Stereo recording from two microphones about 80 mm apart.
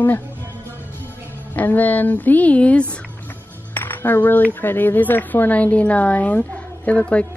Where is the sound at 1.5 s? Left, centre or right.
Left.